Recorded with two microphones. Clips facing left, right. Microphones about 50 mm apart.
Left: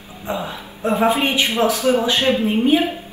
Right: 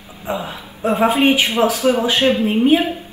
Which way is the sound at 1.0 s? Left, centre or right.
Right.